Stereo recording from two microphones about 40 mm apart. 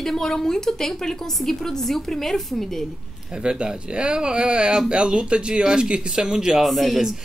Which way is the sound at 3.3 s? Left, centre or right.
Right.